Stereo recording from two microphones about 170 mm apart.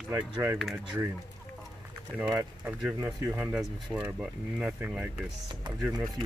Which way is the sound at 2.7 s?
10° right (ahead or behind).